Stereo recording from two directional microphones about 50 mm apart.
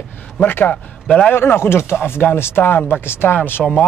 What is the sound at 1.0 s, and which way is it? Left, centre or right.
Speech, centre.